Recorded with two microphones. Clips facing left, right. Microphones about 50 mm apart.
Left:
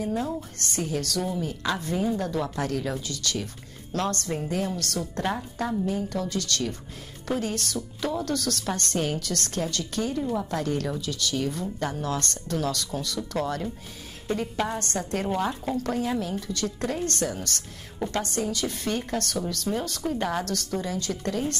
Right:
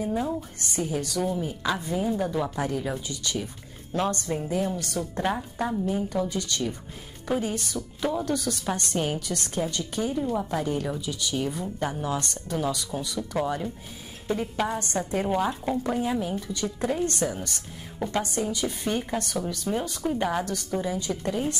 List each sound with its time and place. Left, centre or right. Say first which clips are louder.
0.0 s a woman's voice: right 1 dB; centre
5.9 s a woman's voice: right 2 dB; centre